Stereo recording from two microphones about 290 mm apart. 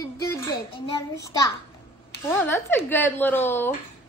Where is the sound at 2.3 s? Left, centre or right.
Centre.